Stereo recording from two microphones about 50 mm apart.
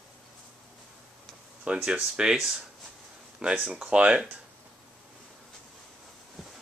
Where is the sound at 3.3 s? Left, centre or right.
Right.